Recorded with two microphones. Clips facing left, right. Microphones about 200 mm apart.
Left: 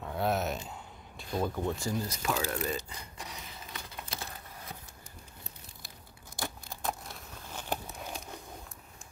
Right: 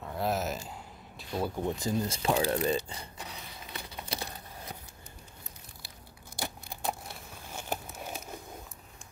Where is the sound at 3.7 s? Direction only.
15° right (ahead or behind).